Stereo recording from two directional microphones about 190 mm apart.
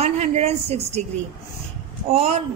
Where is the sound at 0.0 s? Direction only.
35° right (ahead or behind).